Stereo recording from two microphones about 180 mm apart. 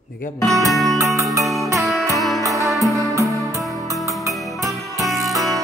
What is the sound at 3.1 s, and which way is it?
Music, 15° right (ahead or behind).